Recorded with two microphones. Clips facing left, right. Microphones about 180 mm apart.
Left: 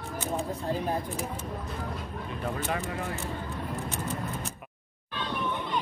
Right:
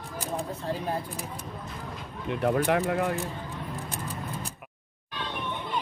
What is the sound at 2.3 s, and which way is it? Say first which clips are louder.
Speech: right 9 dB; 65° right (ahead or behind).